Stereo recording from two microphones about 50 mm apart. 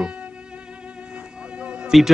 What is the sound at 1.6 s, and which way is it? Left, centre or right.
Music, right.